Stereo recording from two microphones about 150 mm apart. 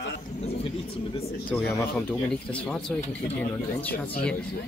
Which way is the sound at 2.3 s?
5° left (ahead or behind).